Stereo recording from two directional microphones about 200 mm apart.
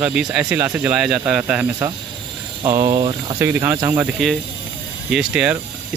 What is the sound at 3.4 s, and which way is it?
Speech, 15° right (ahead or behind).